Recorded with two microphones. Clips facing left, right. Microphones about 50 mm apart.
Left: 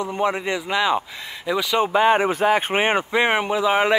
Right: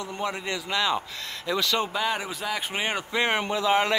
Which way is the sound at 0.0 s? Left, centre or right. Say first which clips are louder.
Left 8 dB; left.